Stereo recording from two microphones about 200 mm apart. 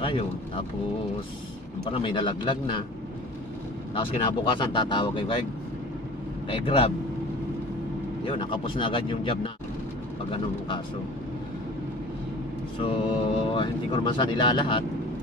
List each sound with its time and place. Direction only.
1.9 s speech: 25° left (ahead or behind)
3.9 s speech: 25° left (ahead or behind)
6.5 s speech: 25° left (ahead or behind)
8.3 s speech: 25° left (ahead or behind)
12.7 s speech: 25° left (ahead or behind)